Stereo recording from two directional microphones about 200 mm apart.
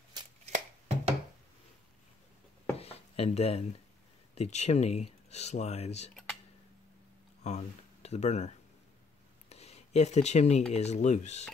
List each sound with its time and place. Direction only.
0.5 s chopping: 35° right (ahead or behind)
2.8 s a sound: 30° left (ahead or behind)
4.4 s speech: 35° left (ahead or behind)
7.4 s speech: 35° left (ahead or behind)
9.5 s a sound: 30° left (ahead or behind)
10.7 s speech: 35° left (ahead or behind)